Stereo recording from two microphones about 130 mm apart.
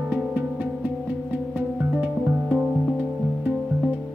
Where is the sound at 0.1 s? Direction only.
10° right (ahead or behind).